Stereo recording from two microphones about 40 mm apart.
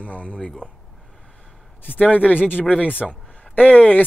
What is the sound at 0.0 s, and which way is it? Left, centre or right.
Speech, left.